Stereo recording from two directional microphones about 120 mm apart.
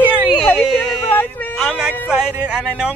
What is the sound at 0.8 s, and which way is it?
Speech, 15° left (ahead or behind).